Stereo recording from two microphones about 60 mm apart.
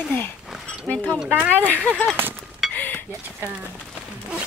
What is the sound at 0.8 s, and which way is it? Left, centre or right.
Speech, left.